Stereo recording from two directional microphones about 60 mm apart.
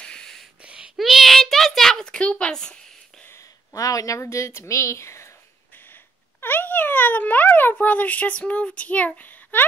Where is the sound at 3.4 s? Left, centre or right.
Left.